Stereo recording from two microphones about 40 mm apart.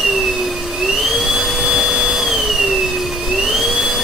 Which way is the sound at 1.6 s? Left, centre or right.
Centre.